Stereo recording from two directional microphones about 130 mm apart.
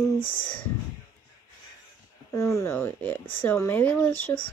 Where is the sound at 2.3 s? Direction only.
25° left (ahead or behind).